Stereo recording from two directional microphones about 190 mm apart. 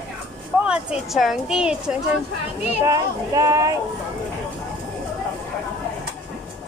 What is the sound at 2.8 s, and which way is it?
Speech, 15° right (ahead or behind).